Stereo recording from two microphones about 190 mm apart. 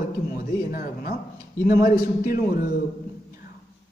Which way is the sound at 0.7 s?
50° left (ahead or behind).